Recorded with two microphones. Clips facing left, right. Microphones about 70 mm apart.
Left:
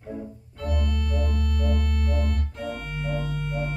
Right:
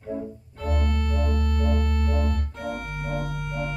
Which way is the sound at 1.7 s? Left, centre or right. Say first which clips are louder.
Right 1 dB; right.